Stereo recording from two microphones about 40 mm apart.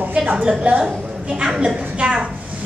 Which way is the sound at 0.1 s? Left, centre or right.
Right.